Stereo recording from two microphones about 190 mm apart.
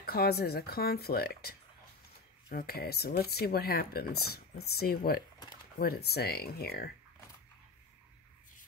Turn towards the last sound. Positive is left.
turn(degrees=55)  # may be behind; listen again after turning